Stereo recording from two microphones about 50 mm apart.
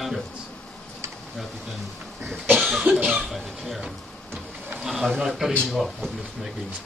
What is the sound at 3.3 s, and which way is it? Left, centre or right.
Speech, centre.